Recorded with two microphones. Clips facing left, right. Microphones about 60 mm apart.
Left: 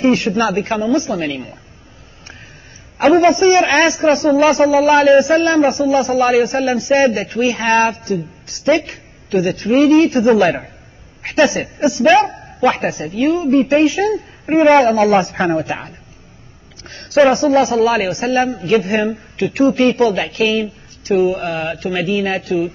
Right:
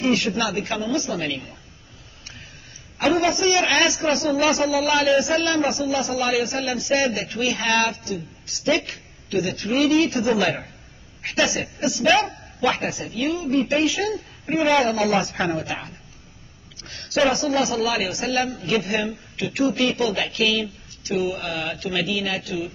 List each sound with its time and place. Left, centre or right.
0.0 s a man's voice: left
3.0 s a man's voice: left